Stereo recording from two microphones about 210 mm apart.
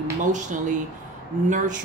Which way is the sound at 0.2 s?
35° right (ahead or behind).